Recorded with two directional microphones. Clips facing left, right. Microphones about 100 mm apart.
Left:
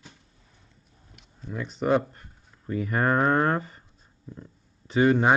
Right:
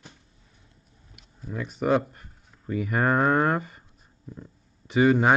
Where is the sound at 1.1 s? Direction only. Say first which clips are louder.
Right 1 dB; 5° right (ahead or behind).